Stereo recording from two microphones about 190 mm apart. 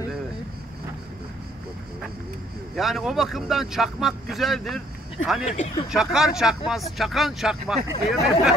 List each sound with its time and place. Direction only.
2.7 s speech: centre (ahead or behind)
5.4 s speech: 35° left (ahead or behind)
5.9 s speech: 5° right (ahead or behind)